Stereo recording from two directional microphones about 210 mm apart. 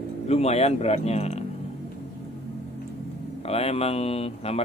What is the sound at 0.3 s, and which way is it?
Speech, 30° left (ahead or behind).